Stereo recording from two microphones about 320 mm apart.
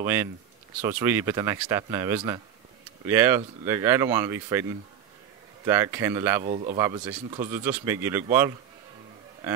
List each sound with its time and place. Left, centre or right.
0.0 s speech: centre
6.5 s speech: centre